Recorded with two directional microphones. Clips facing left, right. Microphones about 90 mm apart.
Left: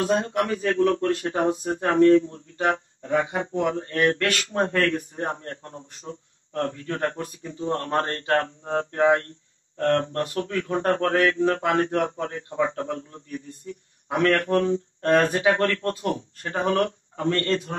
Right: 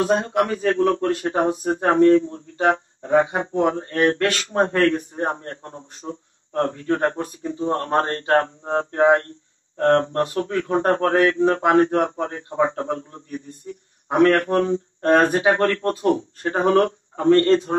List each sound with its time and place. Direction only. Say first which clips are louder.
0.0 s a man's voice: right 3 dB; 25° right (ahead or behind)